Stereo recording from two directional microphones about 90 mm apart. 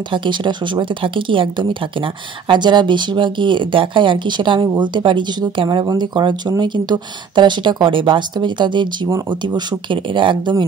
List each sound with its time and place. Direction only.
0.1 s speech: 60° right (ahead or behind)